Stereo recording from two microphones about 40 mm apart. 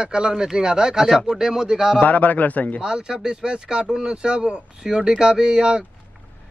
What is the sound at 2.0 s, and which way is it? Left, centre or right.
Speech, left.